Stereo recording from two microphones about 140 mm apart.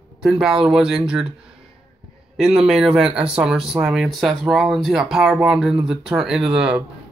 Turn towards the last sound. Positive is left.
turn(degrees=-5)  # may be behind; listen again after turning